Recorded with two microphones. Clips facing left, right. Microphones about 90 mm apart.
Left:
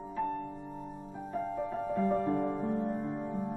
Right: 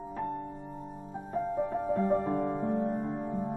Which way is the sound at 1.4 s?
20° right (ahead or behind).